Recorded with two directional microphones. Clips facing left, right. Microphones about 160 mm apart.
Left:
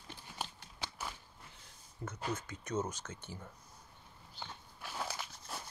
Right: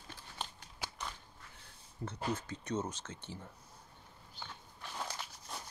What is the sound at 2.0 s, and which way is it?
Speech, 35° right (ahead or behind).